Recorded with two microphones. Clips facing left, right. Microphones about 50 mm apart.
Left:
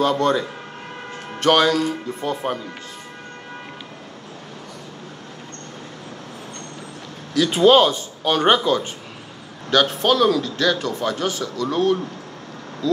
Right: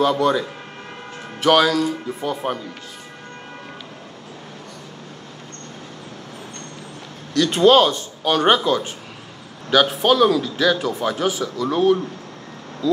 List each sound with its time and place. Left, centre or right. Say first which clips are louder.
0.0 s a man's voice: right 1 dB; centre
7.3 s a man's voice: even; centre